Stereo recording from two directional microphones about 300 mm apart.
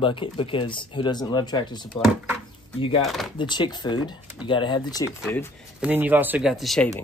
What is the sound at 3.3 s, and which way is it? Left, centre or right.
Speech, centre.